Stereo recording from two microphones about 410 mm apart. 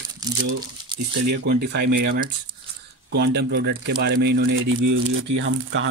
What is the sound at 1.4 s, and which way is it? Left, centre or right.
Speech, right.